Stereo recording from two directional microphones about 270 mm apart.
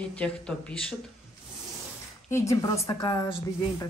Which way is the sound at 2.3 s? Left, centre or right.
Centre.